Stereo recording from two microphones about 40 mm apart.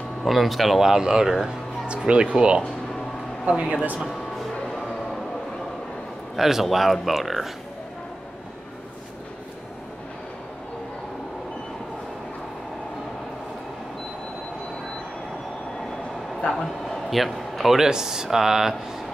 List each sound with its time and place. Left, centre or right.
0.2 s speech: centre; by 3.8 s right
6.3 s speech: centre
16.9 s a sound: centre
17.7 s speech: centre